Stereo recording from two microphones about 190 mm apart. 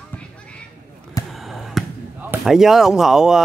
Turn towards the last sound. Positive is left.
turn(degrees=0)  # may be behind; listen again after turning